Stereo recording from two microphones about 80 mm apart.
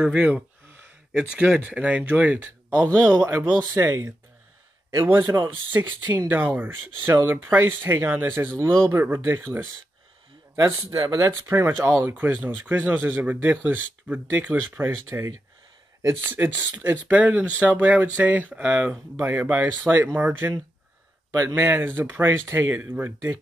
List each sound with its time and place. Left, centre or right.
0.0 s speech: centre
3.6 s speech: right
10.5 s speech: right
21.5 s speech: right